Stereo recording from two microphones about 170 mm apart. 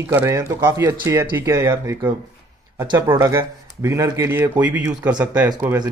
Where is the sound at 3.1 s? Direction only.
15° right (ahead or behind).